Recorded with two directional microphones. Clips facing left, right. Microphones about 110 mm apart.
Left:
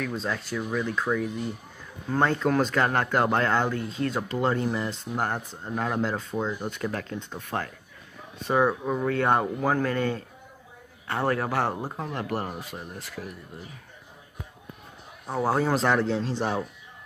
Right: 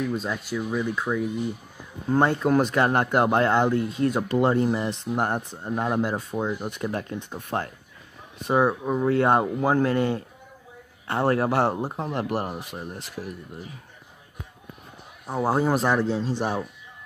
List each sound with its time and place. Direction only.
0.1 s speech: 10° right (ahead or behind)
11.1 s speech: 30° right (ahead or behind)
15.2 s speech: 10° right (ahead or behind)